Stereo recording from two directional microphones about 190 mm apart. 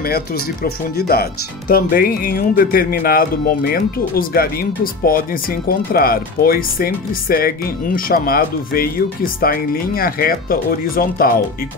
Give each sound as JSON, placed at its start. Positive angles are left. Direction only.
{"t": 0.7, "sound": "speech", "side_deg": 55}